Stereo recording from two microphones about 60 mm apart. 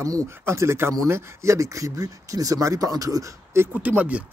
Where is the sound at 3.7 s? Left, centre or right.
Right.